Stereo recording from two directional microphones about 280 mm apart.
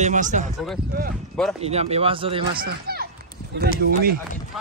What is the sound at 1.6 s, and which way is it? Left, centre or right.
A man's voice, right.